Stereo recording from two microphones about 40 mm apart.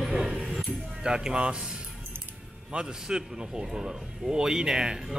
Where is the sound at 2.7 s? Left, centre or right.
Right.